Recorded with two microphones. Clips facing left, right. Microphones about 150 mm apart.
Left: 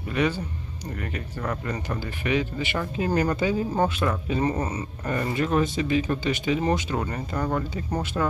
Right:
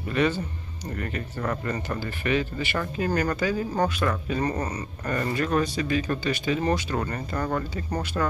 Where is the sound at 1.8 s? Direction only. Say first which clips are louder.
Even; 15° left (ahead or behind).